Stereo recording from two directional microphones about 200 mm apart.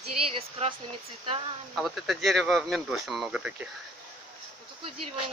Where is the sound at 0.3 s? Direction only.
25° right (ahead or behind).